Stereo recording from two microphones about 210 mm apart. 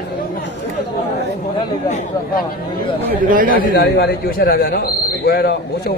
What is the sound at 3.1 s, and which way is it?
Speech, 40° right (ahead or behind).